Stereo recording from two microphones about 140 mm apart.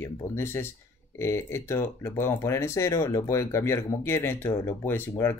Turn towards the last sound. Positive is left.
turn(degrees=15)  # may be behind; listen again after turning